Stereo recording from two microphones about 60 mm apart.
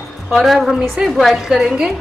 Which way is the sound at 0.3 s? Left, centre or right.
Centre.